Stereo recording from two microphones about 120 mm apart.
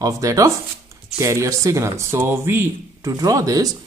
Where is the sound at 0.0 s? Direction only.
30° right (ahead or behind).